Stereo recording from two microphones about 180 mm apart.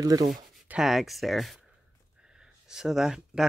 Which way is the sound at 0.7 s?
Centre (ahead or behind).